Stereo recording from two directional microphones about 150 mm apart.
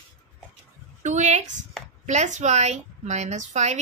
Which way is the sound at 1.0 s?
50° right (ahead or behind).